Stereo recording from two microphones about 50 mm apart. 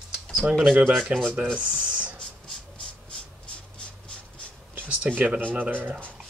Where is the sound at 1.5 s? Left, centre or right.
Right.